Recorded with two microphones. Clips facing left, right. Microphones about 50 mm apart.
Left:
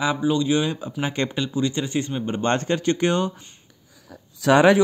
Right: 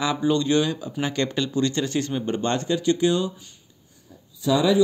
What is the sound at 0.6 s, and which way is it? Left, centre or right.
Speech, left.